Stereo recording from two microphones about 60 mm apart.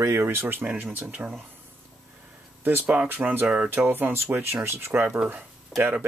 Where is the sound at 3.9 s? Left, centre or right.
Right.